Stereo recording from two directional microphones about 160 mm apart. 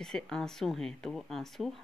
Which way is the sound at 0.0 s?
5° left (ahead or behind).